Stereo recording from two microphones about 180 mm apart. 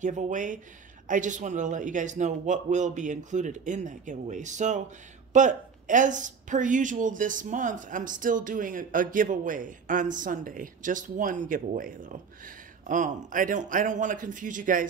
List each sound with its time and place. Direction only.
0.0 s speech: 45° right (ahead or behind)